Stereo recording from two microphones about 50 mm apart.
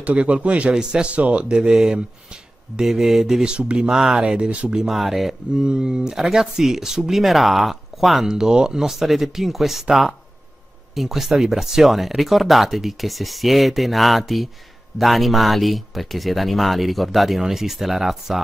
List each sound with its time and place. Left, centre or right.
0.0 s speech: right
4.7 s speech: centre
5.5 s speech: centre